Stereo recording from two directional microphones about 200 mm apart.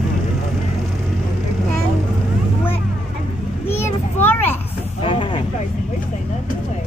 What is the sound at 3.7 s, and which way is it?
Children playing, 10° left (ahead or behind).